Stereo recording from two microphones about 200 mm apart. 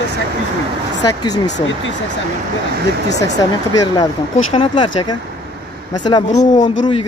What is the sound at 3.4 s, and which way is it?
Speech, 15° left (ahead or behind).